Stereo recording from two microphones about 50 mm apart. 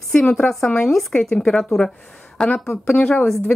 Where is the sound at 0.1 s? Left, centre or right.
Centre.